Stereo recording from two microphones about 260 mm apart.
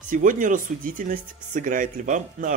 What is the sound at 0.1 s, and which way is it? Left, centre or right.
Speech, right.